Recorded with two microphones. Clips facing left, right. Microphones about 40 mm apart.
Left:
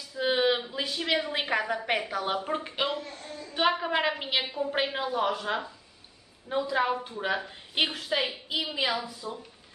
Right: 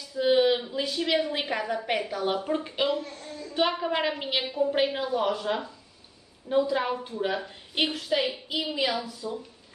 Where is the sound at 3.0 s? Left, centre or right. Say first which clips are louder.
Right 3 dB; left.